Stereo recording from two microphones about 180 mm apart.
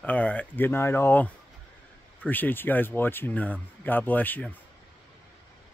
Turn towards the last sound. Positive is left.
turn(degrees=10)  # may be behind; listen again after turning